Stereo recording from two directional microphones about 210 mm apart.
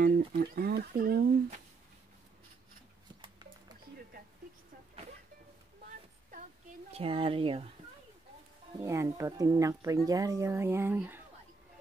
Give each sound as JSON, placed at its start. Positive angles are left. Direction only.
{"t": 0.4, "sound": "speech", "side_deg": -50}
{"t": 3.2, "sound": "a sound", "side_deg": -20}
{"t": 6.9, "sound": "speech", "side_deg": -25}
{"t": 8.7, "sound": "speech", "side_deg": -15}